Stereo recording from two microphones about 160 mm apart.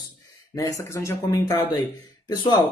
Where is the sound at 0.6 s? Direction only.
20° left (ahead or behind).